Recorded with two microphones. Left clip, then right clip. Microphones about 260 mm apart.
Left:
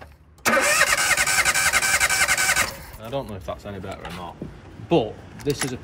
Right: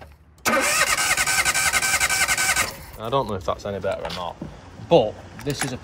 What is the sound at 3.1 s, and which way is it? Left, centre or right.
Speech, right.